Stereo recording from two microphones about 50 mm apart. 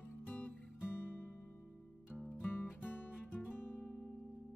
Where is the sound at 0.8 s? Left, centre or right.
Left.